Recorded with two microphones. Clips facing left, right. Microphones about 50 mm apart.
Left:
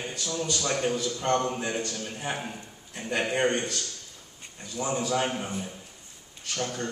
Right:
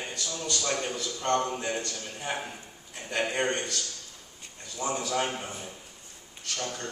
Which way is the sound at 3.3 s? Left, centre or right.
Centre.